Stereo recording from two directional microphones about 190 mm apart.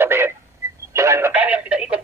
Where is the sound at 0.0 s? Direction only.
10° right (ahead or behind).